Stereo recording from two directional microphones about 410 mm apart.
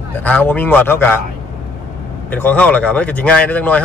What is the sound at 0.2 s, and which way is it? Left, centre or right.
Speech, centre.